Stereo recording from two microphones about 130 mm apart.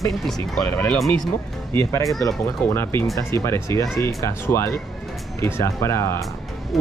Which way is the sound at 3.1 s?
25° left (ahead or behind).